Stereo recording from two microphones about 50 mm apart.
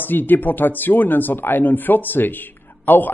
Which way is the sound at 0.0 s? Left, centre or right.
Left.